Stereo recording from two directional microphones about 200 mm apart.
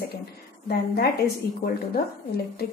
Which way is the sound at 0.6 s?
50° left (ahead or behind).